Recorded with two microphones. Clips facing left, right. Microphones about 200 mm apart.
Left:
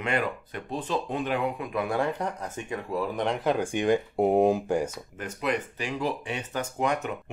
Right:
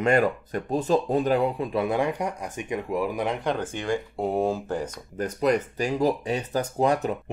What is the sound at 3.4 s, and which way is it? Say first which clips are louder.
Speech: left 3 dB; 10° left (ahead or behind).